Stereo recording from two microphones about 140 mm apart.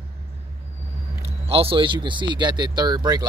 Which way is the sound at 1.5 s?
40° right (ahead or behind).